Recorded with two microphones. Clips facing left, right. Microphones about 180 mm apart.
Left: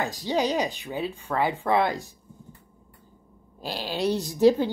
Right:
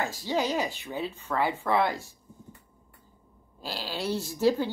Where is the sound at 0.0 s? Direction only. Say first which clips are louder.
Left 3 dB; 15° left (ahead or behind).